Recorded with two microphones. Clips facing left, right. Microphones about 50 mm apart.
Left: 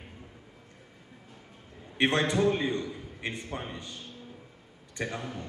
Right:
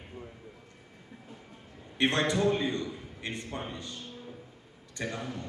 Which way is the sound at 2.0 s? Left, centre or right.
Left.